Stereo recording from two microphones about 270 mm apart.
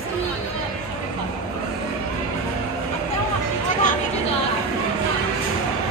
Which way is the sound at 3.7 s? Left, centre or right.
Left.